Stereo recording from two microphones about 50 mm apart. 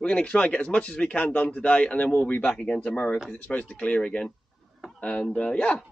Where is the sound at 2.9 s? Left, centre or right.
Left.